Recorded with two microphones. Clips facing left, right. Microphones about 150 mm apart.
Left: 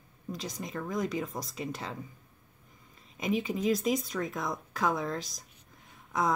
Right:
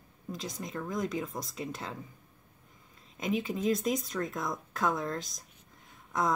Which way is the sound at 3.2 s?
Centre (ahead or behind).